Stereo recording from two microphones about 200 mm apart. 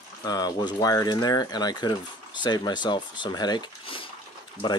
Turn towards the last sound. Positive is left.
turn(degrees=25)  # may be behind; listen again after turning